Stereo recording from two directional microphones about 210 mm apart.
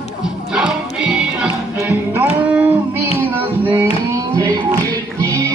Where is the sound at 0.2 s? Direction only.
5° right (ahead or behind).